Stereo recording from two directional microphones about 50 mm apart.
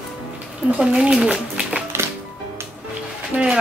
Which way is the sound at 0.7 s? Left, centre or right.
Centre.